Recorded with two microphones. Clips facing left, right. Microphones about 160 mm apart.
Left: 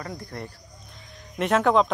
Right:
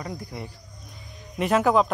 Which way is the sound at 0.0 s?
15° right (ahead or behind).